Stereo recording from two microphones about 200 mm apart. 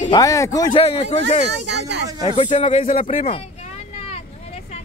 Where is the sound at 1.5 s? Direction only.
60° right (ahead or behind).